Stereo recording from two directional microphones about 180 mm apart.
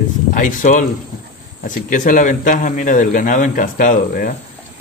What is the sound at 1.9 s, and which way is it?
A man's voice, 45° left (ahead or behind).